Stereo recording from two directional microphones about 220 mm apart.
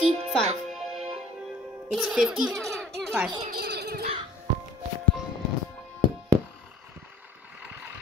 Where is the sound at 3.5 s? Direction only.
45° right (ahead or behind).